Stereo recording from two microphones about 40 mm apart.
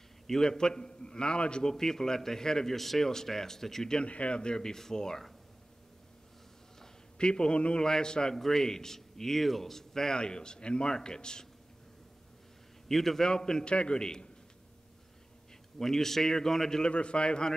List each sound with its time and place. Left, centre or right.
0.3 s a man's voice: centre
1.7 s a man's voice: centre
4.0 s a man's voice: left; by 5.2 s centre
7.2 s a man's voice: left
12.8 s a man's voice: centre
15.8 s a man's voice: centre
16.8 s a man's voice: left